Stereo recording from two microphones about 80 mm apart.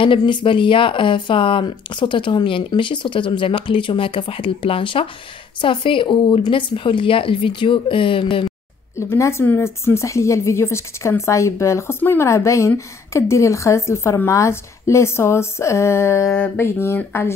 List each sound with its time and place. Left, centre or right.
0.0 s speech: left
9.1 s a woman's voice: left